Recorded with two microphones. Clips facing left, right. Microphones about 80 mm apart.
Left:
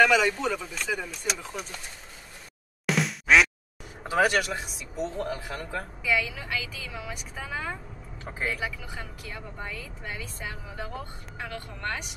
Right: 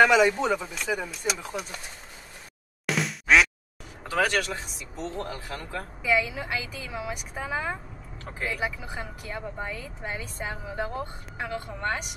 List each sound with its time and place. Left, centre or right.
0.0 s speech: centre
2.9 s music: centre
4.2 s speech: centre
6.0 s speech: centre